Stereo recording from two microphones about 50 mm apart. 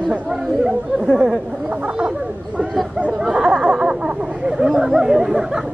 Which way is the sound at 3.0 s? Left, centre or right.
Right.